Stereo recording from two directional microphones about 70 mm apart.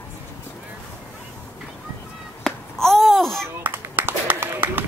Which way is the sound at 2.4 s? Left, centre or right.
Centre.